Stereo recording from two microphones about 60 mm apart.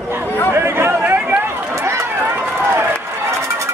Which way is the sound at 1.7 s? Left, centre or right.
Right.